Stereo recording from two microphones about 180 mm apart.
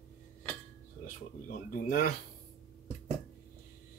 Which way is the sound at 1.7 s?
50° left (ahead or behind).